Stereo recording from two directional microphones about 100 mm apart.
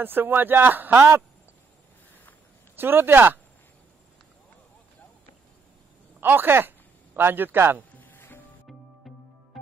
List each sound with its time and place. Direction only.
0.0 s speech: 20° right (ahead or behind)
2.7 s speech: 20° right (ahead or behind)
6.2 s speech: 20° right (ahead or behind)
7.9 s music: 20° left (ahead or behind)